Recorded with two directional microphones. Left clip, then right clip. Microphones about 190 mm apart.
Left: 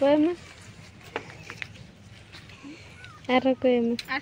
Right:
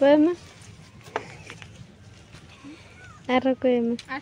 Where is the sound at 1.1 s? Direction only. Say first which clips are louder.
Right 4 dB; 35° right (ahead or behind).